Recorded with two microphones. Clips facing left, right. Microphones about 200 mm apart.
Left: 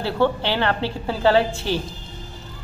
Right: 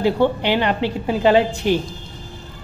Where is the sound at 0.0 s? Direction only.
15° right (ahead or behind).